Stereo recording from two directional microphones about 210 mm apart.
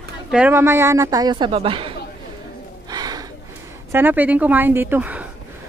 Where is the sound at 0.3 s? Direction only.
10° right (ahead or behind); by 2.0 s 25° right (ahead or behind).